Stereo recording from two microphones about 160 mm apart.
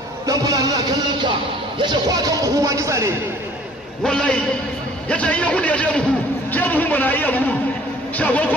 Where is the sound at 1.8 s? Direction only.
25° right (ahead or behind).